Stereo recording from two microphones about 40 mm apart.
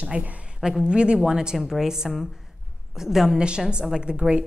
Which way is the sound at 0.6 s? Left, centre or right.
Centre.